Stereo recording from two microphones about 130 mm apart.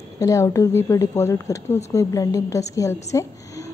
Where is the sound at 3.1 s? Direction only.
25° left (ahead or behind).